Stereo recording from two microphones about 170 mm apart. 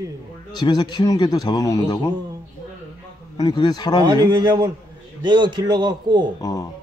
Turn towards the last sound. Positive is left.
turn(degrees=20)  # may be behind; listen again after turning